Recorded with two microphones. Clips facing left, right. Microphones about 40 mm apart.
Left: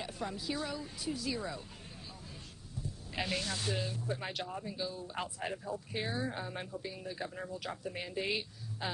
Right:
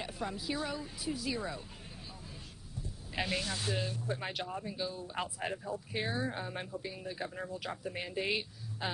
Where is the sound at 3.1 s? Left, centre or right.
Centre.